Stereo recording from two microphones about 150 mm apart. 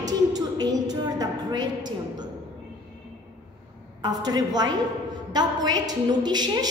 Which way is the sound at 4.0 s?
25° right (ahead or behind).